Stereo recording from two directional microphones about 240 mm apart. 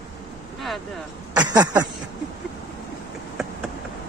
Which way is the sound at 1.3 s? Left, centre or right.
Centre.